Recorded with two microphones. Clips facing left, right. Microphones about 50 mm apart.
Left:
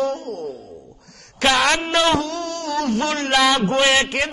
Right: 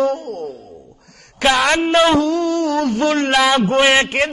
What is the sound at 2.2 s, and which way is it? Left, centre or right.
Speech, right.